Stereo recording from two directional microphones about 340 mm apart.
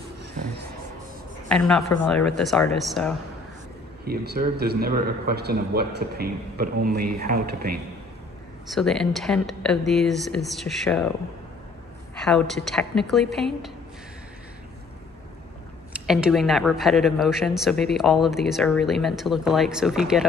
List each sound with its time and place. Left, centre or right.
1.5 s speech: centre
4.0 s speech: right
8.6 s speech: centre
12.2 s speech: centre
15.9 s speech: centre